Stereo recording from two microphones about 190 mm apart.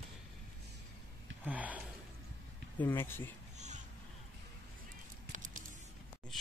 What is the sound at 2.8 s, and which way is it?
Speech, 10° left (ahead or behind).